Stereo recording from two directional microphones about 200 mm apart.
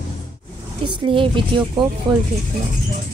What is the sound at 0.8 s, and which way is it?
A woman's voice, 25° right (ahead or behind).